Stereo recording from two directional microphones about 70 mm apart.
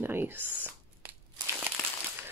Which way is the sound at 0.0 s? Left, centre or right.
Right.